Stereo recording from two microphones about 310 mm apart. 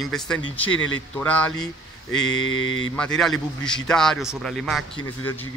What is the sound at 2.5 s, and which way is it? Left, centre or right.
Mantra, left.